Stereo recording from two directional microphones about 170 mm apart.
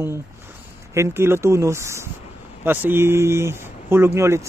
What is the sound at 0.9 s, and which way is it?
Speech, 15° right (ahead or behind).